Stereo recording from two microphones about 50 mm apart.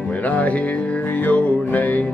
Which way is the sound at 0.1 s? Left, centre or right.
Left.